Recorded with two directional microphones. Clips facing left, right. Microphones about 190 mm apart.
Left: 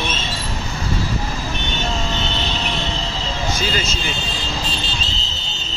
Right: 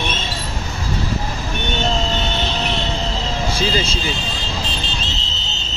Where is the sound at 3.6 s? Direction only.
30° right (ahead or behind).